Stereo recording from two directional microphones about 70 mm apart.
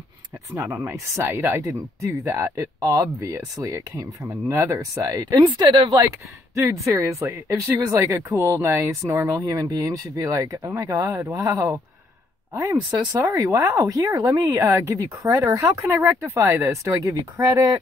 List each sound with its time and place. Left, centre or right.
0.8 s speech: right
6.5 s speech: right
13.3 s speech: right